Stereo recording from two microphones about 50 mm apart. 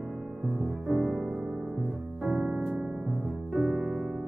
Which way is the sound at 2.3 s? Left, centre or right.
Right.